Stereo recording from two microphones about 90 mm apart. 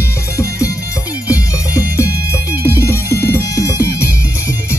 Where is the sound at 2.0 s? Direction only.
30° left (ahead or behind).